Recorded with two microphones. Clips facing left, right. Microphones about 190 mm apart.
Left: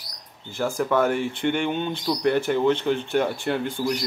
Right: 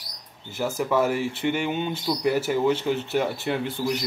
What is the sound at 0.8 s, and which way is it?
Speech, 5° right (ahead or behind).